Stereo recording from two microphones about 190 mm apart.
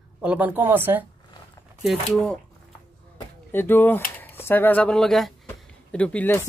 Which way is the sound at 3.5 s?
10° left (ahead or behind).